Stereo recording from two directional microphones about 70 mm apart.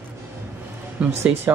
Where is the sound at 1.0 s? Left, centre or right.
Centre.